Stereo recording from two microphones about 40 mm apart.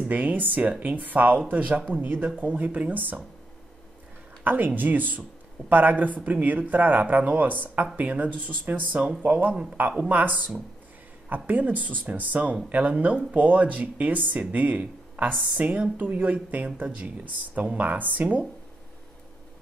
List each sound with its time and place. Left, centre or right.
0.1 s speech: right
1.5 s speech: right
2.0 s speech: right
4.5 s speech: right
9.5 s speech: right
9.8 s speech: right